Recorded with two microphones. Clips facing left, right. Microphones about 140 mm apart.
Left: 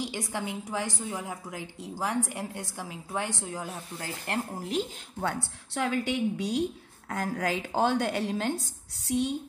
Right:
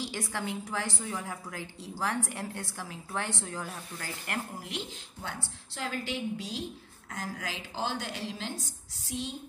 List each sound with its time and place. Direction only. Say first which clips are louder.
0.0 s a woman's voice: left 2 dB; 15° left (ahead or behind)
4.6 s a woman's voice: left 8 dB; 40° left (ahead or behind)
5.2 s speech: left 9 dB; 60° left (ahead or behind)